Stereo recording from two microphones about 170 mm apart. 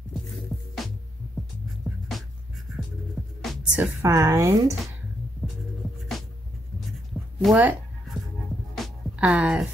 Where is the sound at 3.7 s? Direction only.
15° right (ahead or behind).